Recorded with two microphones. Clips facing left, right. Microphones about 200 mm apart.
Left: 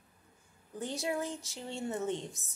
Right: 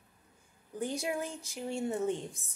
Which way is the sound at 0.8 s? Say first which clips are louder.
Right 1 dB; 15° right (ahead or behind).